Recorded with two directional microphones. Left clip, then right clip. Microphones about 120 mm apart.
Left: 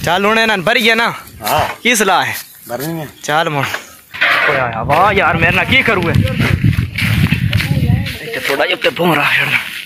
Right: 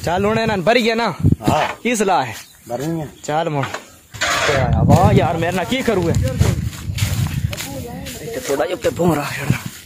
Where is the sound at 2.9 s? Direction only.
5° left (ahead or behind).